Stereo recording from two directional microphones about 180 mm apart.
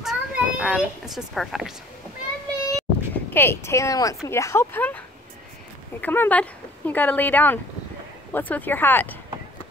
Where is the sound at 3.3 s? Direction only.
10° left (ahead or behind).